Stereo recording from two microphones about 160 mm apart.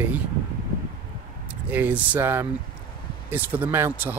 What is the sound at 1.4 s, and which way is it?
Speech, 10° right (ahead or behind).